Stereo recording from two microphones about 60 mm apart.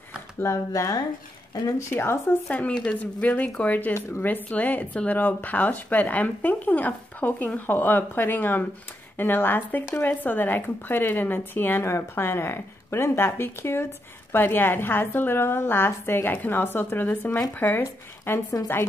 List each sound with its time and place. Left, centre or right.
0.4 s speech: left
1.8 s a woman's voice: left
2.5 s a woman's voice: centre
11.8 s a woman's voice: left